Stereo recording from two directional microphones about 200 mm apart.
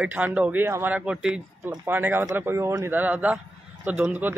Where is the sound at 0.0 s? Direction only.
10° right (ahead or behind).